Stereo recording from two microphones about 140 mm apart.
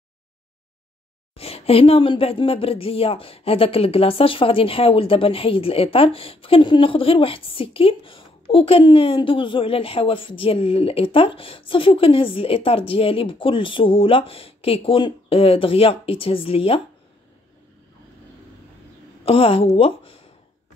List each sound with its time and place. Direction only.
1.3 s speech: 45° left (ahead or behind)
19.2 s speech: 40° left (ahead or behind)